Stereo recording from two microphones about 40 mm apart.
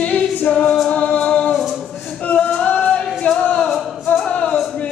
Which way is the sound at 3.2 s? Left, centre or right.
Left.